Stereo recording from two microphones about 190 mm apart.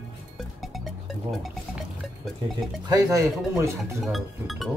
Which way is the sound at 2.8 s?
20° right (ahead or behind).